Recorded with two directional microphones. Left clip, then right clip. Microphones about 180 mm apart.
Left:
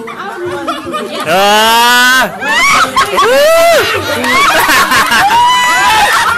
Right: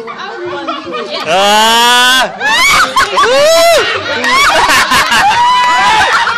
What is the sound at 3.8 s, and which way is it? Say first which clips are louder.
Speech: left 1 dB; 60° left (ahead or behind).